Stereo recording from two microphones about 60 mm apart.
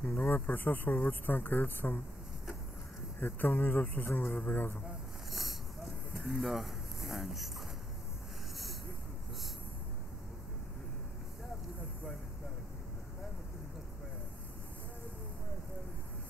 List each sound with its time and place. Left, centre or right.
0.2 s speech: left
3.2 s speech: left
5.3 s a sound: centre